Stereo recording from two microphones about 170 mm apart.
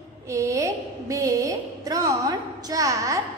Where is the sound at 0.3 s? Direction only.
20° right (ahead or behind).